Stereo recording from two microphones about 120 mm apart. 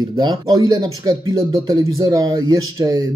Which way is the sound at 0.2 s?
35° right (ahead or behind).